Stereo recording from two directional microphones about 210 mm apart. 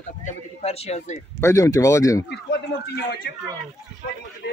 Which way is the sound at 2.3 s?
55° left (ahead or behind).